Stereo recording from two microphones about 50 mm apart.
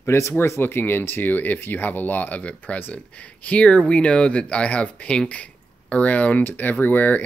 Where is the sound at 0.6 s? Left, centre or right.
Left.